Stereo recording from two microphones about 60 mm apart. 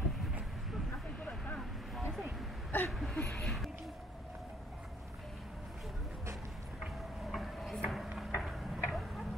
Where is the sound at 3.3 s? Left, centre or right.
Centre.